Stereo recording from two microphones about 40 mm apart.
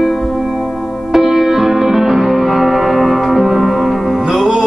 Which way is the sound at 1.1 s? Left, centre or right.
Centre.